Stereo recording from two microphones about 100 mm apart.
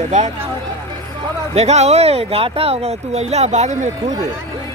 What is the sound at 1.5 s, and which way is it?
Speech, 90° right.